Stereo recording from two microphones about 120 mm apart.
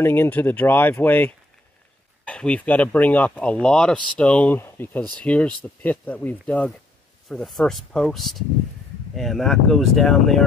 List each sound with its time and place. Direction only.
0.0 s speech: 20° left (ahead or behind)
7.2 s speech: centre (ahead or behind)